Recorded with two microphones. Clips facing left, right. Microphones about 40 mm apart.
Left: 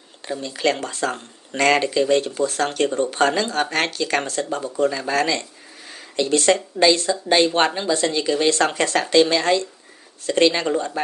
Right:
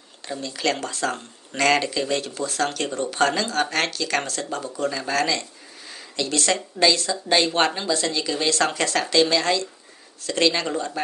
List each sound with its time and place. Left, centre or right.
0.4 s speech: left
2.4 s speech: left